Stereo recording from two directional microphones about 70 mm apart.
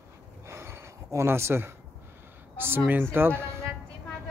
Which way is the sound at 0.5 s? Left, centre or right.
Right.